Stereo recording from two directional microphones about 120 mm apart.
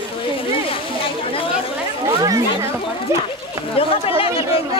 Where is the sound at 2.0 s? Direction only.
30° right (ahead or behind).